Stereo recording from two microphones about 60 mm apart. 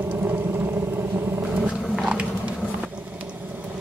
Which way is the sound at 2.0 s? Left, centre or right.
Centre.